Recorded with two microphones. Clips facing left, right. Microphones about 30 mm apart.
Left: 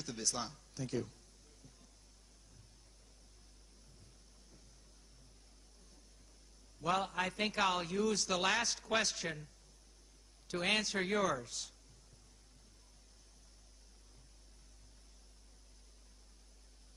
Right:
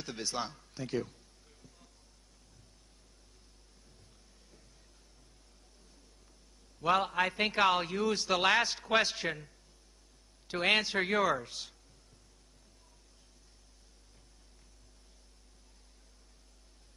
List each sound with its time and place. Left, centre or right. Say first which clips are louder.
0.0 s speech: right 3 dB; right
6.8 s a man's voice: right 6 dB; right
10.5 s a man's voice: right 6 dB; right